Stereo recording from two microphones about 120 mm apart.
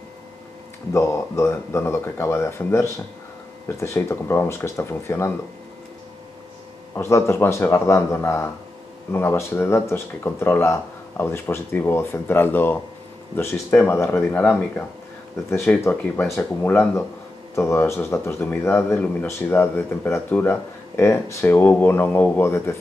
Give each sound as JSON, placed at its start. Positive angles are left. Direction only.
{"t": 0.9, "sound": "speech", "side_deg": 25}
{"t": 7.0, "sound": "speech", "side_deg": 20}